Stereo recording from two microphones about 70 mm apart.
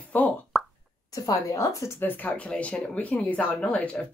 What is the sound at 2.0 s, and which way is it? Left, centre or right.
Speech, left.